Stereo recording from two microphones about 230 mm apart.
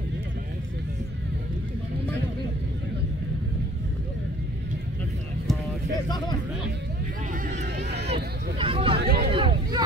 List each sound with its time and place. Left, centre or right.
7.4 s vehicle: right
8.1 s a sound: right
9.0 s hubbub: right
9.3 s hubbub: right